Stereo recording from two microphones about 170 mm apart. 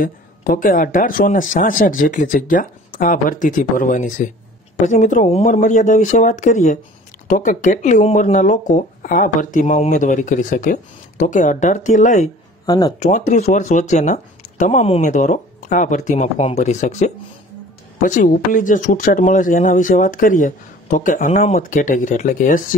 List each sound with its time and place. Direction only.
0.0 s speech: 55° left (ahead or behind)
12.6 s speech: 25° left (ahead or behind)
13.0 s speech: 45° left (ahead or behind)